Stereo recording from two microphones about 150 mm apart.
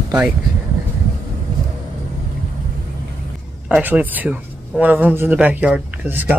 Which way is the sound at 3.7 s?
10° right (ahead or behind).